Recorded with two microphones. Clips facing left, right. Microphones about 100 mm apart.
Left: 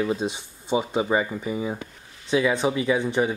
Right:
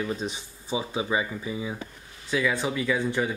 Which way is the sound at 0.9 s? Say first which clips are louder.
Left 4 dB; 40° left (ahead or behind).